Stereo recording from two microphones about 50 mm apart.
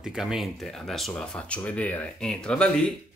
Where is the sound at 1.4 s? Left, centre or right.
Left.